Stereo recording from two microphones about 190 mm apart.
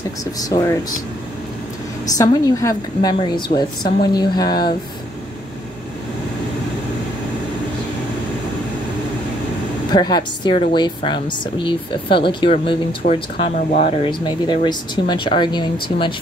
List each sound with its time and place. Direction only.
0.2 s speech: 20° left (ahead or behind)
2.1 s speech: 20° left (ahead or behind)
9.8 s speech: 20° left (ahead or behind)